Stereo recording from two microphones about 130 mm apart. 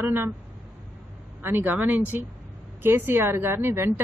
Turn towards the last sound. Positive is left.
turn(degrees=-20)  # may be behind; listen again after turning